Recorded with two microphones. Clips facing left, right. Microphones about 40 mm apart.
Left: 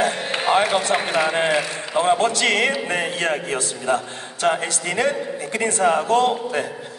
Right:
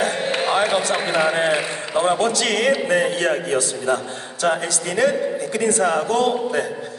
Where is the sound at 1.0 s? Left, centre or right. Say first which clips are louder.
Right 1 dB; centre.